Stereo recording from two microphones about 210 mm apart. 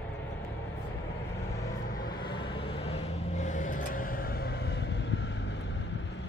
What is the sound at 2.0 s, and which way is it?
Vehicle, 20° left (ahead or behind).